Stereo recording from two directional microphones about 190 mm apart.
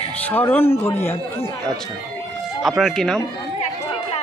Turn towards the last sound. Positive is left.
turn(degrees=5)  # may be behind; listen again after turning